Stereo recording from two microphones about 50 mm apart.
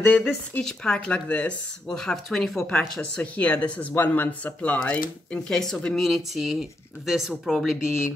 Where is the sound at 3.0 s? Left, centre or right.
Left.